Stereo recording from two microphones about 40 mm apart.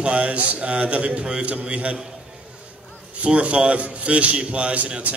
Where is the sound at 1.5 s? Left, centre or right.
Right.